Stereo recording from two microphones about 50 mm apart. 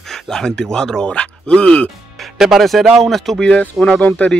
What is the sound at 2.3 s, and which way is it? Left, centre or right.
Speech, centre.